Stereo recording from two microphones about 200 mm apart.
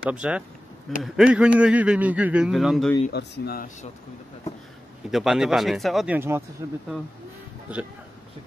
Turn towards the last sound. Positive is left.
turn(degrees=-5)  # may be behind; listen again after turning